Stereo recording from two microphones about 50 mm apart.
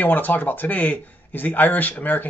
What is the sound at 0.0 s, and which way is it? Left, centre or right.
A man's voice, left.